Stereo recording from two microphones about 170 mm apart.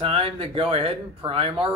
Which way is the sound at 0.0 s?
35° right (ahead or behind).